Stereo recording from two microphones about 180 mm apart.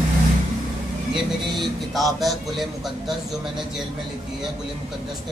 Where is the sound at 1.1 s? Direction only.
Centre (ahead or behind).